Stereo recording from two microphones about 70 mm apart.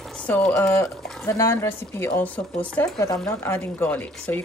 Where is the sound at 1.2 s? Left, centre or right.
Left.